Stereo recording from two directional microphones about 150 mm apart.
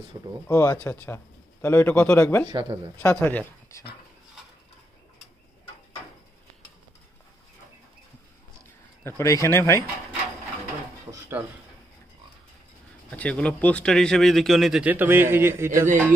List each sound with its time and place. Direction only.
0.5 s speech: 15° left (ahead or behind)
2.4 s speech: 30° right (ahead or behind)
3.2 s speech: 10° left (ahead or behind)
9.0 s speech: 20° left (ahead or behind)
11.1 s a sound: 15° right (ahead or behind)
13.1 s speech: 10° left (ahead or behind); by 15.9 s 15° right (ahead or behind)